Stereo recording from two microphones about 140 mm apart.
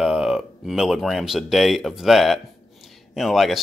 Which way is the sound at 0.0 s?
5° right (ahead or behind).